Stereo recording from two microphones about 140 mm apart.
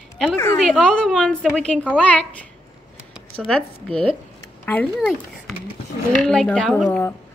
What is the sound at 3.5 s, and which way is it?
A woman's voice, 5° left (ahead or behind).